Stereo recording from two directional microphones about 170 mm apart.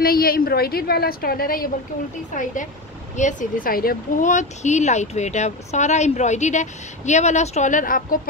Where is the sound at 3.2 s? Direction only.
50° left (ahead or behind).